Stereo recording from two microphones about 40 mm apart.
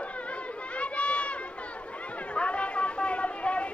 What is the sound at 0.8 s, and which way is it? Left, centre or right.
Crowd, left.